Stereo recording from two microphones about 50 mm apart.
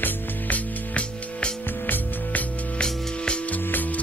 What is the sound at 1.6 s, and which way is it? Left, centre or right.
Music, left.